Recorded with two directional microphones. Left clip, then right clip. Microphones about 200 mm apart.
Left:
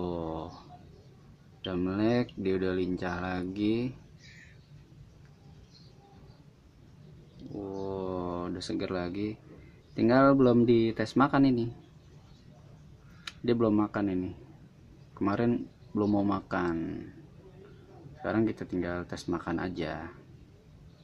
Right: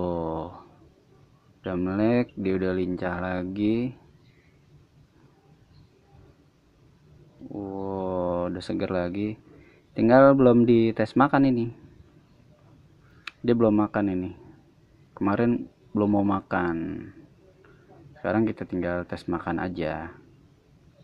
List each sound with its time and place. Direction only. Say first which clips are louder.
0.0 s a sound: right 6 dB; 15° right (ahead or behind)
1.6 s speech: right 4 dB; 15° right (ahead or behind)
7.7 s a sound: right 6 dB; 15° right (ahead or behind)
9.9 s speech: right 6 dB; 15° right (ahead or behind)
13.2 s speech: right 6 dB; 15° right (ahead or behind)
18.2 s speech: right 4 dB; 15° right (ahead or behind)